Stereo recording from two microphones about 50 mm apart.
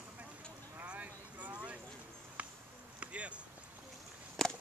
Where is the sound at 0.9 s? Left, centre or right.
Right.